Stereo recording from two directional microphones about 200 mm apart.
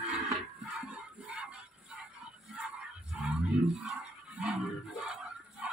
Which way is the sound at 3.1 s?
Centre (ahead or behind).